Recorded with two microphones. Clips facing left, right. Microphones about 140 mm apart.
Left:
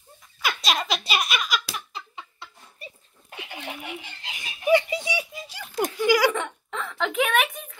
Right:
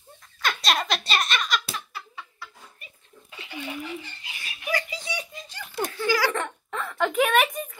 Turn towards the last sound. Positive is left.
turn(degrees=0)  # may be behind; listen again after turning